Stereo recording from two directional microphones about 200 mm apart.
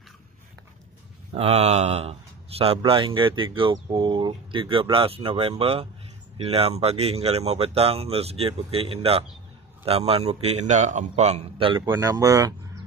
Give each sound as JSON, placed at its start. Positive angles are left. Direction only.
{"t": 1.3, "sound": "speech", "side_deg": -30}